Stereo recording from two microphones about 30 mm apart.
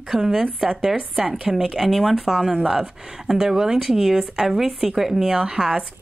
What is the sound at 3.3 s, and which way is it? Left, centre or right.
Speech, centre.